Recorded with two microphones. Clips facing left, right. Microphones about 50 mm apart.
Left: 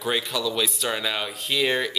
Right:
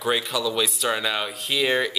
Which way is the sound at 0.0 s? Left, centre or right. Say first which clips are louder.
Right 2 dB; centre.